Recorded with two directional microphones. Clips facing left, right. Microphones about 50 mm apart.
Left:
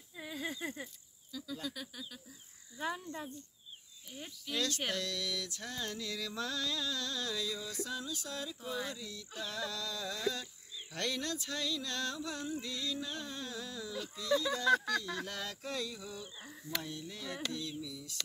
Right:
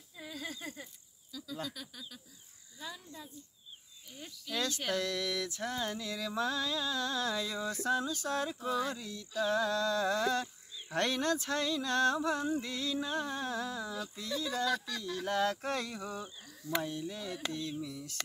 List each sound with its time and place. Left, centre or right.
0.2 s a sound: centre
1.3 s a sound: centre
2.8 s speech: left
4.9 s mantra: right
9.4 s speech: right
14.3 s speech: left
15.2 s speech: right
16.7 s mantra: right